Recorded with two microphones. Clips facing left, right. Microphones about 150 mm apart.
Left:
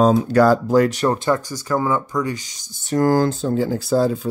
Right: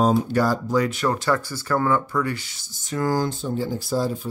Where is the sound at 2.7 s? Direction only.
50° left (ahead or behind).